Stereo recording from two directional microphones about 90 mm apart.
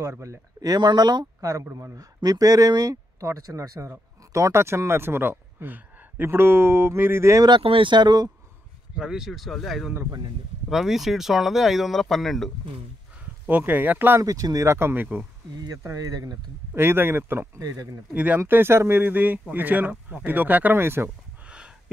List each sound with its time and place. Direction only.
0.0 s speech: 30° right (ahead or behind); by 1.5 s 50° right (ahead or behind)
1.5 s speech: 35° right (ahead or behind)
7.6 s speech: 75° right (ahead or behind); by 8.3 s 50° right (ahead or behind)
8.9 s speech: 5° right (ahead or behind)
13.5 s speech: 20° right (ahead or behind)
14.2 s speech: 40° right (ahead or behind)
14.7 s speech: 25° right (ahead or behind)
15.5 s speech: 50° right (ahead or behind)
16.7 s speech: 25° right (ahead or behind)
17.6 s speech: 40° right (ahead or behind)
18.1 s speech: 20° right (ahead or behind)
21.5 s a sound: 10° right (ahead or behind)